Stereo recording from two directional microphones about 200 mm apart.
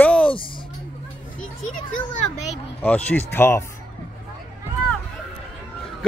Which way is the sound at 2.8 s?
10° left (ahead or behind).